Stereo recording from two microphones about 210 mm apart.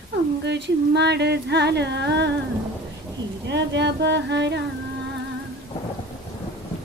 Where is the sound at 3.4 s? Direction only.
55° right (ahead or behind).